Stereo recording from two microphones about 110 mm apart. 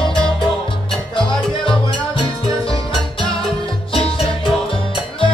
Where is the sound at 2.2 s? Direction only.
50° left (ahead or behind).